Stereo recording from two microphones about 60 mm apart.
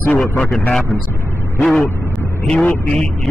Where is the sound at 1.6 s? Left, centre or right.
Centre.